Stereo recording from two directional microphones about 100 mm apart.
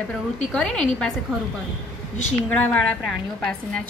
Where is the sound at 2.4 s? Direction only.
15° left (ahead or behind).